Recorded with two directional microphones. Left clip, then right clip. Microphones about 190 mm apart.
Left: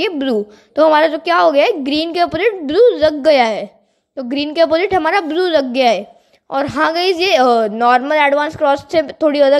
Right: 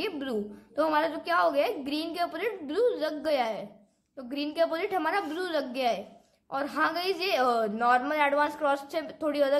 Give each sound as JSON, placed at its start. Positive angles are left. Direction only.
{"t": 0.0, "sound": "a woman's voice", "side_deg": 35}